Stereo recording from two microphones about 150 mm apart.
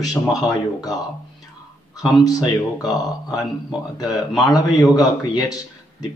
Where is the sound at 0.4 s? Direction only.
25° left (ahead or behind).